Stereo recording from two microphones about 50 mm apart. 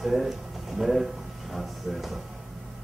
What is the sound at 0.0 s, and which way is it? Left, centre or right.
Speech, centre.